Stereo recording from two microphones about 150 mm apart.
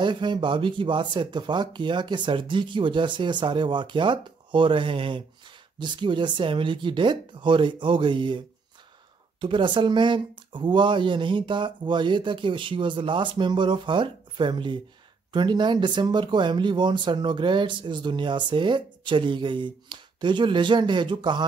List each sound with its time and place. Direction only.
0.0 s speech: 30° right (ahead or behind)
9.4 s speech: 35° right (ahead or behind)